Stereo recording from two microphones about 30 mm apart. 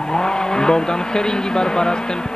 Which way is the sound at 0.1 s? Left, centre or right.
Left.